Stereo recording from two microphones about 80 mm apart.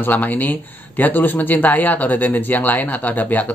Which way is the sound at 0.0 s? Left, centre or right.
Left.